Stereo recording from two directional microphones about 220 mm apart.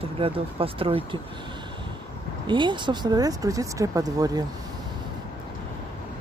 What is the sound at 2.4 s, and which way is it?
Speech, 20° right (ahead or behind).